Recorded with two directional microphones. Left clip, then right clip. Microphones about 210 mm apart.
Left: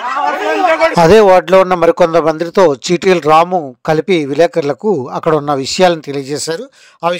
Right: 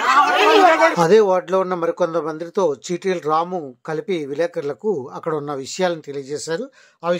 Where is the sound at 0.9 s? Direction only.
35° left (ahead or behind).